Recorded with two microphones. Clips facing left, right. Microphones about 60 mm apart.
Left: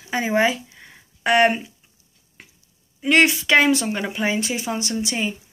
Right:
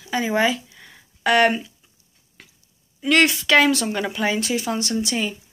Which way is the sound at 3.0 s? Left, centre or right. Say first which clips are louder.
Left 1 dB; centre.